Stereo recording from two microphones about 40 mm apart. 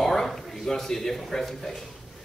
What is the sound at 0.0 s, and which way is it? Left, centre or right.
Speech, centre.